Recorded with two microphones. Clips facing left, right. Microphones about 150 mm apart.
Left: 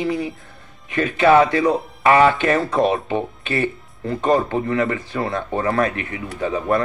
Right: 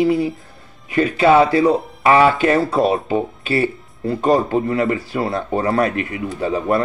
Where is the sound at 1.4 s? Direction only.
30° right (ahead or behind).